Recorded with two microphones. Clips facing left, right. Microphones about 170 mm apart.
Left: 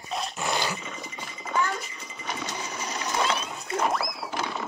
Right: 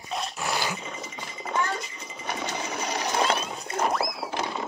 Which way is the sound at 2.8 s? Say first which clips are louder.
Right 5 dB; 70° right (ahead or behind).